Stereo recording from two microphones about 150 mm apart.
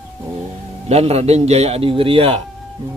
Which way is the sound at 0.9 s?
45° right (ahead or behind).